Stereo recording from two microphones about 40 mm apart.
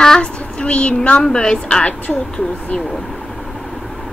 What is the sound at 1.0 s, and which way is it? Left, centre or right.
Speech, centre.